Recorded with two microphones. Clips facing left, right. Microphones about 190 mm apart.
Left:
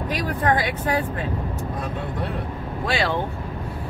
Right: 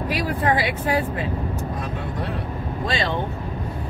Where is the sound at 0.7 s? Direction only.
10° right (ahead or behind).